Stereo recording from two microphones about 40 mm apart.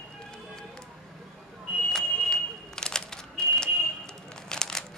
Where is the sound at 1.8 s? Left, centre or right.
Centre.